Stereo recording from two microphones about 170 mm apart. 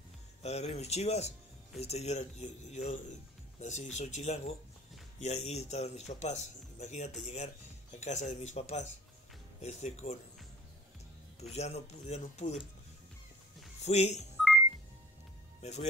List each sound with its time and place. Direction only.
0.4 s speech: 40° left (ahead or behind)
11.3 s speech: 40° left (ahead or behind)
13.8 s speech: 40° left (ahead or behind)
15.6 s speech: 40° left (ahead or behind)